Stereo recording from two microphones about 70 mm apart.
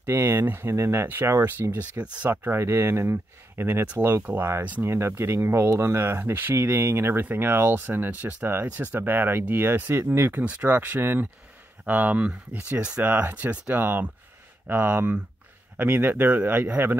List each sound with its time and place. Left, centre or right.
0.0 s speech: right
1.6 s speech: right